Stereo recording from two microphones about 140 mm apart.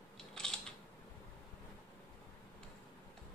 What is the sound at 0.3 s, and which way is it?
Scissors, 5° left (ahead or behind).